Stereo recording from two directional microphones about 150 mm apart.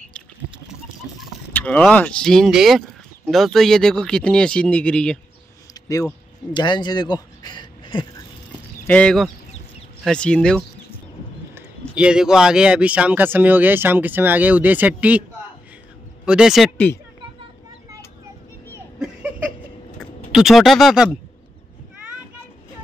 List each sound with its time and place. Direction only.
1.5 s speech: 10° left (ahead or behind)
6.5 s speech: 30° left (ahead or behind)
8.8 s speech: 10° left (ahead or behind)
11.9 s speech: 5° right (ahead or behind)
16.3 s speech: 5° right (ahead or behind)
16.7 s speech: 10° left (ahead or behind)
18.9 s a sound: 5° right (ahead or behind)
20.0 s speech: centre (ahead or behind)